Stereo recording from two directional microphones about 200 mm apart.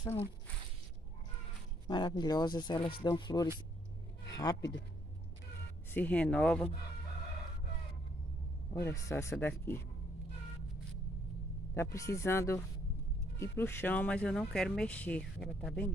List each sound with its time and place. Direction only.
0.0 s speech: 10° left (ahead or behind)
1.9 s speech: 20° left (ahead or behind)
5.9 s speech: 10° left (ahead or behind)
8.7 s speech: 15° left (ahead or behind)
11.7 s speech: 15° left (ahead or behind)